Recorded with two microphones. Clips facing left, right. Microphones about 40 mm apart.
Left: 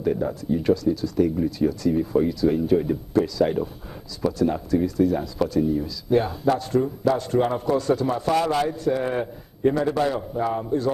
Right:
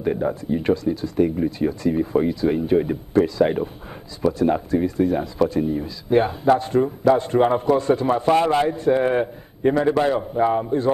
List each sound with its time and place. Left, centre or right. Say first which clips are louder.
0.0 s speech: right 2 dB; right